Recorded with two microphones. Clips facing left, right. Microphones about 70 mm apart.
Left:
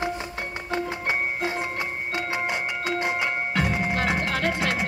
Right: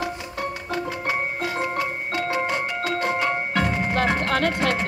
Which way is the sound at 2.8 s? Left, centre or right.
Centre.